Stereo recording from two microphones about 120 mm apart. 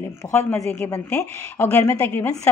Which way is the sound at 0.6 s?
10° left (ahead or behind).